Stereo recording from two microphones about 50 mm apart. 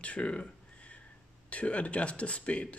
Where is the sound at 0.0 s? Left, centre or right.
Left.